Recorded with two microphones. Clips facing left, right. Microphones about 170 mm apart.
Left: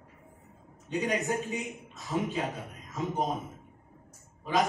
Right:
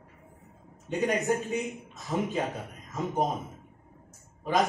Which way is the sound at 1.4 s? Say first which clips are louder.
Right 3 dB; centre (ahead or behind).